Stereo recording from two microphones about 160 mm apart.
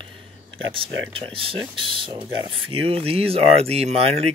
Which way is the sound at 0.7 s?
35° right (ahead or behind).